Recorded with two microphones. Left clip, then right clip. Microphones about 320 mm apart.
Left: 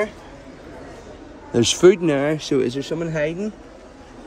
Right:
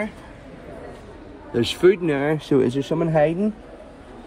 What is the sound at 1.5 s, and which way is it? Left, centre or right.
Speech, centre.